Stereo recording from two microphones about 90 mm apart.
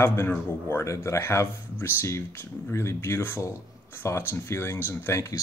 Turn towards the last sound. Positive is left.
turn(degrees=30)  # may be behind; listen again after turning